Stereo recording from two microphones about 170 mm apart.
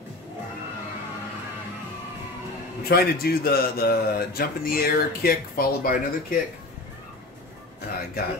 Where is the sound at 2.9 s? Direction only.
65° left (ahead or behind).